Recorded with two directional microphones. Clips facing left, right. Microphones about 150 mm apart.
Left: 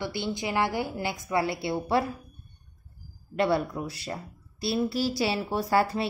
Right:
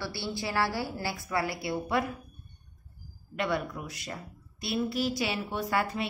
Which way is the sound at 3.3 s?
35° left (ahead or behind).